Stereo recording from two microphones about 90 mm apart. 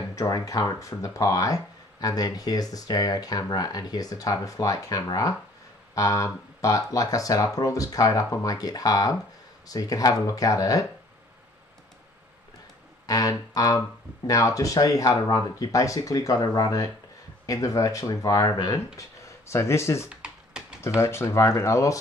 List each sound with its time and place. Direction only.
0.1 s speech: 40° left (ahead or behind)
13.0 s speech: 40° left (ahead or behind)
20.1 s computer keyboard: 10° right (ahead or behind)
21.0 s speech: 30° left (ahead or behind)